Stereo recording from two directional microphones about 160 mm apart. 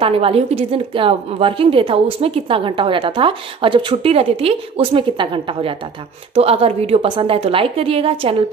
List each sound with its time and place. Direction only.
0.0 s a woman's voice: 35° right (ahead or behind)